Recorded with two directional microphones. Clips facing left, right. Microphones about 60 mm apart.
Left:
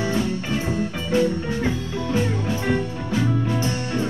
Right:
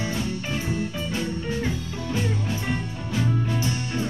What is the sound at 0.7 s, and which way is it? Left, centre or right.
Music, left.